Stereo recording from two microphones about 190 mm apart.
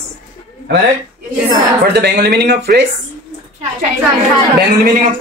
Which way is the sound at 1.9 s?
60° right (ahead or behind).